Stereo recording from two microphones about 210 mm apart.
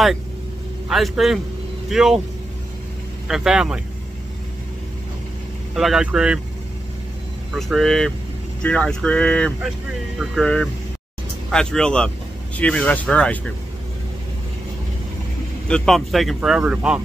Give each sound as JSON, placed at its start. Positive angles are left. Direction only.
{"t": 0.8, "sound": "speech", "side_deg": 0}
{"t": 3.3, "sound": "speech", "side_deg": -5}
{"t": 5.8, "sound": "speech", "side_deg": 0}
{"t": 7.5, "sound": "speech", "side_deg": 0}
{"t": 15.7, "sound": "speech", "side_deg": 0}